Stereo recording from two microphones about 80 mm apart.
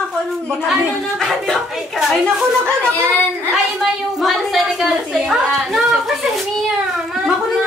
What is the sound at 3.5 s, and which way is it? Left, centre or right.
A woman's voice, centre.